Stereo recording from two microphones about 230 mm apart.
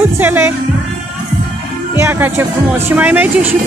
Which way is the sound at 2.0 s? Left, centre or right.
Centre.